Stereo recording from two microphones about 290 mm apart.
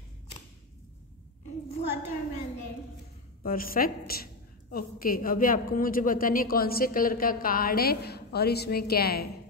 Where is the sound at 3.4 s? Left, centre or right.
Left.